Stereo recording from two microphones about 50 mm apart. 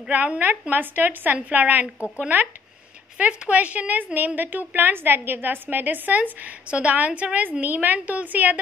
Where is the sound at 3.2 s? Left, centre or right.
Right.